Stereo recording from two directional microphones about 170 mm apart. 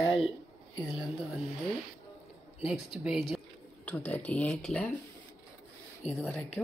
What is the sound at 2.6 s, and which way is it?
Speech, 5° right (ahead or behind).